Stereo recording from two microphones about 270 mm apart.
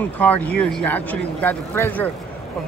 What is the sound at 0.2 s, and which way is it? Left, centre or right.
Speech, centre.